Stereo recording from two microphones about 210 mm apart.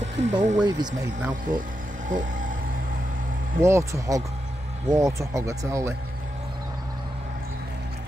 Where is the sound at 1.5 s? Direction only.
40° right (ahead or behind).